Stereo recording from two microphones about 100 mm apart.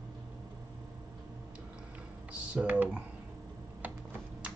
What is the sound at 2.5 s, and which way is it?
Computer keyboard, 15° right (ahead or behind).